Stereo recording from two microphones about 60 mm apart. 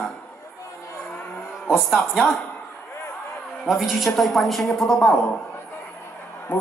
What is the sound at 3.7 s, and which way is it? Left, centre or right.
A man's voice, centre.